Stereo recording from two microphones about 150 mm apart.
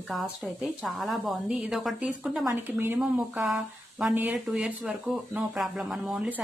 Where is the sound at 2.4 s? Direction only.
15° right (ahead or behind).